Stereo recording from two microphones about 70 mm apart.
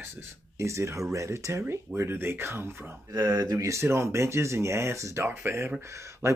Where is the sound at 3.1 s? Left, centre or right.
Right.